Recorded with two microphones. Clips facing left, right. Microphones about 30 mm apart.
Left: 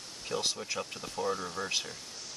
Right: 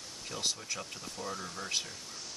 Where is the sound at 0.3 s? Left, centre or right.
Left.